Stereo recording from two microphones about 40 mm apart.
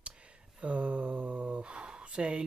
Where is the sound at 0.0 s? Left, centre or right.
Right.